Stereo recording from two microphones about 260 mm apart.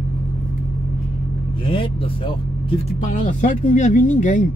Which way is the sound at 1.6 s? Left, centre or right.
Left.